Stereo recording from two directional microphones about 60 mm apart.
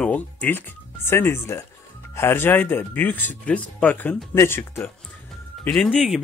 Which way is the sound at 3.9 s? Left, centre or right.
Left.